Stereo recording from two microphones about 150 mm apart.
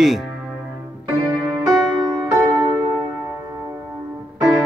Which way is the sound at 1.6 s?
25° right (ahead or behind).